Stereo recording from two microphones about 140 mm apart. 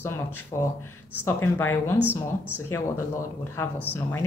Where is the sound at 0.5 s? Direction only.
30° left (ahead or behind).